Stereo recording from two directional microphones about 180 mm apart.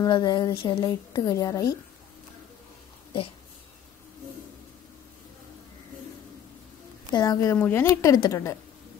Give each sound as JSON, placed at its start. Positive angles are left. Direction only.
{"t": 0.0, "sound": "a woman's voice", "side_deg": 25}
{"t": 7.1, "sound": "a woman's voice", "side_deg": 20}